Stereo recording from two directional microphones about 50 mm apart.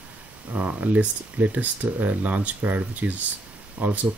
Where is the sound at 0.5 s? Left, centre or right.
Right.